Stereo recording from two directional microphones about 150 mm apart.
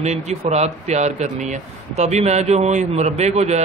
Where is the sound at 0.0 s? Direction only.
50° right (ahead or behind).